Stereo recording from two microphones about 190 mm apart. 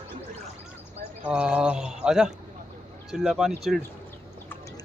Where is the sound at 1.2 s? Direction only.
5° right (ahead or behind).